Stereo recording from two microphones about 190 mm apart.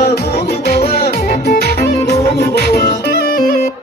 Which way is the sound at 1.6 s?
55° left (ahead or behind).